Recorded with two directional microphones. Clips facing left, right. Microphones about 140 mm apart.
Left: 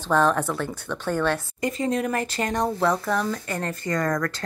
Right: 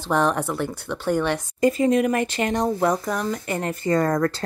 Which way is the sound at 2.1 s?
40° left (ahead or behind).